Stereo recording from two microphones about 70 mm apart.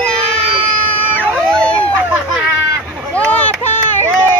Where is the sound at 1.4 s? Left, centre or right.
Centre.